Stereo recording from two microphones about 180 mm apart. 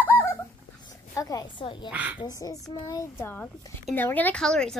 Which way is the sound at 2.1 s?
20° left (ahead or behind).